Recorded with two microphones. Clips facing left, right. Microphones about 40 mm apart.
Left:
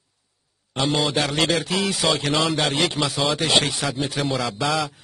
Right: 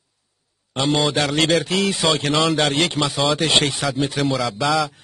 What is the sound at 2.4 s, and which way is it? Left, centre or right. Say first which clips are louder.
Speech: right 3 dB; right.